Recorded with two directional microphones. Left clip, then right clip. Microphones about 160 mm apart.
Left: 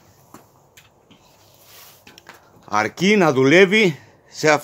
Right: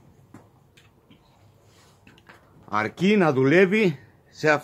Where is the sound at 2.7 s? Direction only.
40° left (ahead or behind).